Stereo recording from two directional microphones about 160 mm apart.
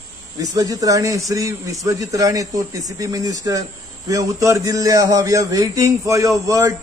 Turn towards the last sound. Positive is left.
turn(degrees=-20)  # may be behind; listen again after turning